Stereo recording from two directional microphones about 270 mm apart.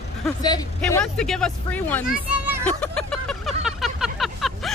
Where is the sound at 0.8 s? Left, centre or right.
Centre.